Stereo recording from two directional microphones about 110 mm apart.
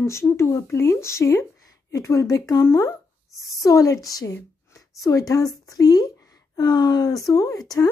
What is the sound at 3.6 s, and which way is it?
A woman's voice, 30° left (ahead or behind).